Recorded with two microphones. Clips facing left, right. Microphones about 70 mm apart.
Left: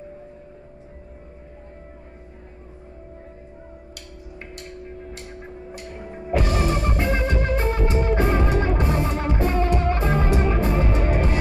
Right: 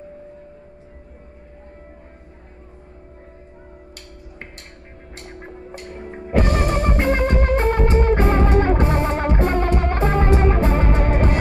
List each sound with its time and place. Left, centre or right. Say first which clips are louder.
5.7 s music: right 3 dB; right